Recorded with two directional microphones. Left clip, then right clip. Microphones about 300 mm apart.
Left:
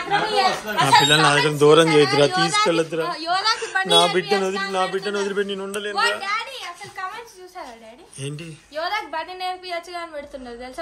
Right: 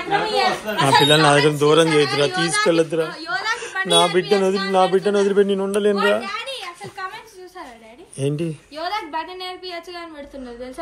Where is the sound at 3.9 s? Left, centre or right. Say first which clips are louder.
Right 2 dB; centre.